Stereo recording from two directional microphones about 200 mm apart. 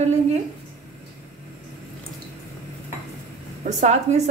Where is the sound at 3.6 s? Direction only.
35° right (ahead or behind).